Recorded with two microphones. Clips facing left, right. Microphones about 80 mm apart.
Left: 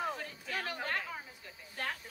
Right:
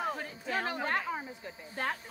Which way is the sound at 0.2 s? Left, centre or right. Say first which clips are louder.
Right 5 dB; right.